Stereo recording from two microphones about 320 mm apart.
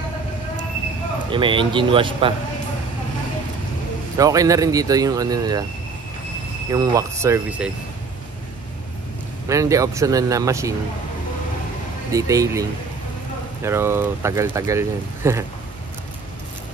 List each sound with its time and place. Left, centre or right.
1.3 s speech: centre
4.2 s speech: centre
6.7 s speech: centre
9.5 s speech: centre
12.1 s speech: centre
13.7 s speech: centre